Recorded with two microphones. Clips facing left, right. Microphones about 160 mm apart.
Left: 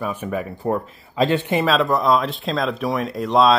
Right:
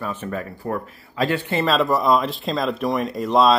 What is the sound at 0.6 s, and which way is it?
Speech, 20° left (ahead or behind).